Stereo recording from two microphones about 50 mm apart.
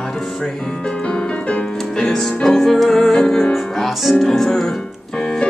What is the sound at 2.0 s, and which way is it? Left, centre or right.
Music, centre.